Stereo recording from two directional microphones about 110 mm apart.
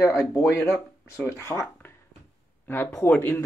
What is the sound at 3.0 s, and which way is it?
Speech, 20° left (ahead or behind).